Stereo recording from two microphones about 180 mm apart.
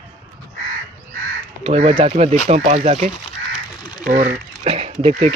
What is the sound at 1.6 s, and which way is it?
Speech, 35° right (ahead or behind).